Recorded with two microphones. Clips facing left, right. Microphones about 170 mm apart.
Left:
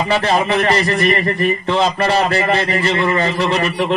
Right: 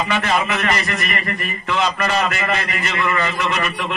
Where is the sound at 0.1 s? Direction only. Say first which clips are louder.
Left 7 dB; 30° left (ahead or behind).